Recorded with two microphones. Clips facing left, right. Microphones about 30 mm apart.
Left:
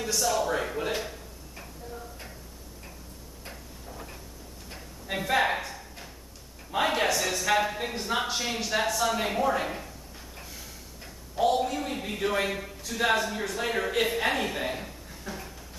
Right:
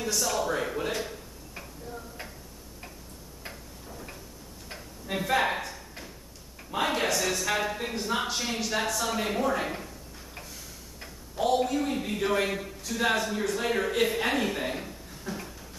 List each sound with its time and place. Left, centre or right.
0.0 s speech: centre
4.7 s a sound: centre
11.3 s a man's voice: centre